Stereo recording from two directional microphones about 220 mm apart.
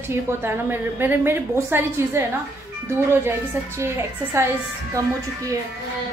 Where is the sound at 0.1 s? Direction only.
10° right (ahead or behind).